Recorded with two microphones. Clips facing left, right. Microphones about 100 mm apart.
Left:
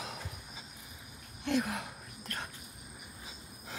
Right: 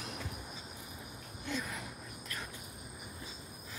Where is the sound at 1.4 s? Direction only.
75° left (ahead or behind).